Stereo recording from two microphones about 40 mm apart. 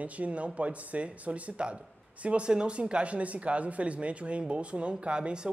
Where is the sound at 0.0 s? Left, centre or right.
Right.